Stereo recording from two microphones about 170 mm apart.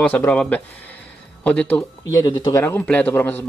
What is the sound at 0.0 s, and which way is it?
A man's voice, 10° left (ahead or behind).